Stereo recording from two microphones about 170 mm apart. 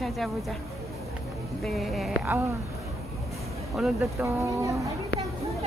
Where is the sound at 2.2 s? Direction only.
15° right (ahead or behind).